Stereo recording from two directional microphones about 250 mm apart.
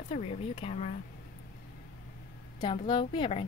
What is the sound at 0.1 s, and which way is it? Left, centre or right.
Speech, left.